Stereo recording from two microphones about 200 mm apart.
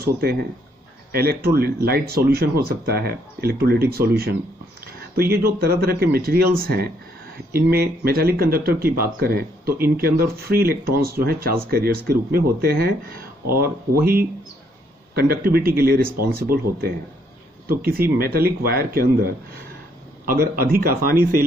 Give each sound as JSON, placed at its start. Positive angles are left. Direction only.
{"t": 1.1, "sound": "speech", "side_deg": -50}